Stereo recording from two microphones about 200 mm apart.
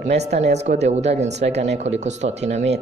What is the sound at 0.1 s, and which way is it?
Speech, 35° right (ahead or behind).